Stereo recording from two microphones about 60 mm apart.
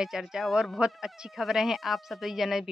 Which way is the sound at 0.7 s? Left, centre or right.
Centre.